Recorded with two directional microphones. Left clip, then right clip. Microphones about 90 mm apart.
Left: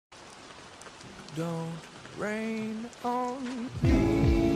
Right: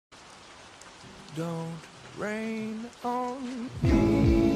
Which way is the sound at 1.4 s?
Centre (ahead or behind).